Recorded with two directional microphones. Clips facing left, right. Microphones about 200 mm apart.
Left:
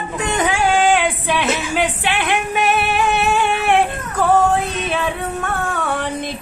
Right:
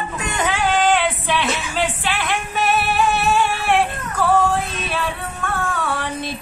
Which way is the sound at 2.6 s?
55° left (ahead or behind).